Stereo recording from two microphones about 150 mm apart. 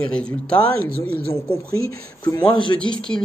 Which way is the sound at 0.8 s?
90° right.